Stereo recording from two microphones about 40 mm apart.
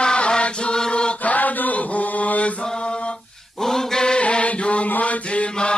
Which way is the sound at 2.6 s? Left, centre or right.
Left.